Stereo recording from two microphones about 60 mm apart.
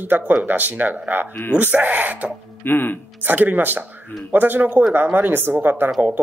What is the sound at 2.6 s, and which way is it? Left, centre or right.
Speech, left.